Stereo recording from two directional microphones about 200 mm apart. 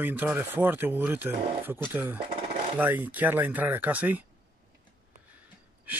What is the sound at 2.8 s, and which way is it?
Speech, 10° right (ahead or behind).